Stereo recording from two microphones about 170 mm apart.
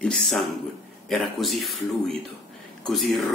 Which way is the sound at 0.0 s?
5° left (ahead or behind).